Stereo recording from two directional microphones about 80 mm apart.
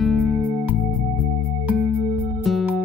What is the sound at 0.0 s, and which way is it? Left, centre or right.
Music, centre.